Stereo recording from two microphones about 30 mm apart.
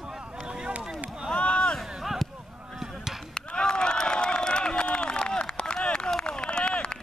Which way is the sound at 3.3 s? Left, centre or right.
Left.